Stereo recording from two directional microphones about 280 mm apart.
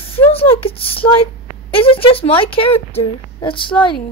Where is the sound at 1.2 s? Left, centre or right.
Centre.